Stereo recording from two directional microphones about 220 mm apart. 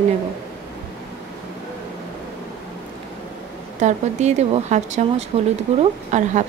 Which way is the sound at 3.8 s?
30° right (ahead or behind).